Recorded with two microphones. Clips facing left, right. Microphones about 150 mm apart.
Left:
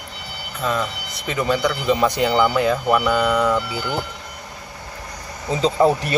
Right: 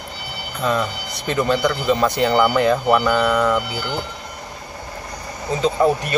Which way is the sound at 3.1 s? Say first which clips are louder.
Right 1 dB; 10° left (ahead or behind).